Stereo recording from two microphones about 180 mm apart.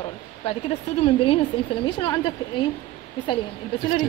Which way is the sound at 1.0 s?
30° left (ahead or behind).